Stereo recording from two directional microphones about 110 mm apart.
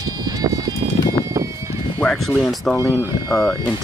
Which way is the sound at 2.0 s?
5° left (ahead or behind).